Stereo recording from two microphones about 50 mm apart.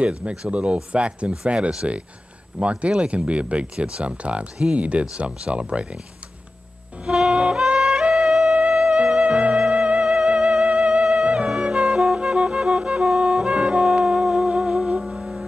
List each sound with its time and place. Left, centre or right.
0.0 s speech: right
7.1 s music: centre